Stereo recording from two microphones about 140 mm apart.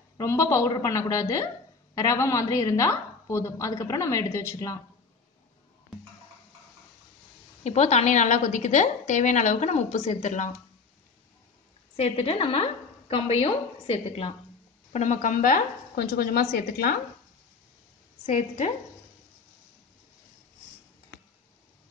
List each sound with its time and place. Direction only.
0.2 s a woman's voice: 20° left (ahead or behind)
7.6 s a woman's voice: 55° left (ahead or behind)
12.0 s a woman's voice: 45° left (ahead or behind)
14.9 s speech: 60° left (ahead or behind); by 16.9 s 90° left
18.2 s a woman's voice: 60° left (ahead or behind)